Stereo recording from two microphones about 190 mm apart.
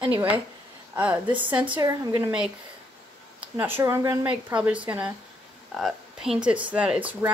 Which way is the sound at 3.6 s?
10° right (ahead or behind).